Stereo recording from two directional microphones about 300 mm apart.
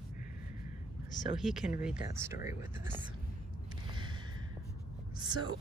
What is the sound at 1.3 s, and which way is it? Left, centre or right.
Speech, centre.